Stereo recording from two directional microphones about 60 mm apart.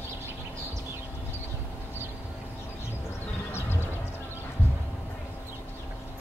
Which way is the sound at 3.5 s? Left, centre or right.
Left.